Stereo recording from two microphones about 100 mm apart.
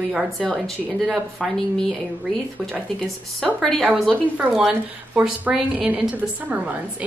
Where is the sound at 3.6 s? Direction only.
5° left (ahead or behind).